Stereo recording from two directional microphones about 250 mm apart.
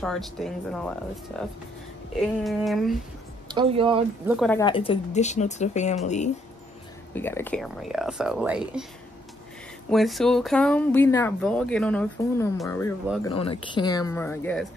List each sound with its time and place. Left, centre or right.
0.0 s speech: centre
3.4 s speech: right
4.5 s a woman's voice: centre
7.2 s speech: centre
9.8 s speech: centre
13.2 s speech: left